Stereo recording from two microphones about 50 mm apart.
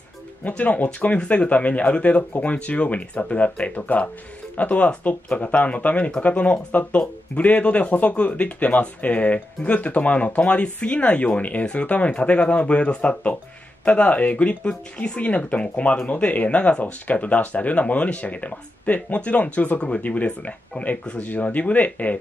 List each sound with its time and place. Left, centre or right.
0.4 s speech: left